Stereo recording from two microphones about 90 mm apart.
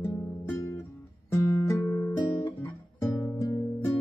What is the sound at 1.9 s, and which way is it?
Guitar, 30° left (ahead or behind).